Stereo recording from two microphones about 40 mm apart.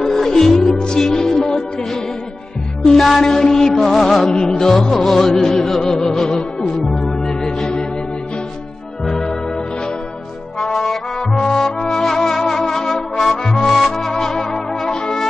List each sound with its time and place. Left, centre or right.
0.0 s music: centre
1.0 s music: centre
3.0 s music: centre
9.0 s organ: centre
10.6 s brass instrument: centre
13.7 s music: centre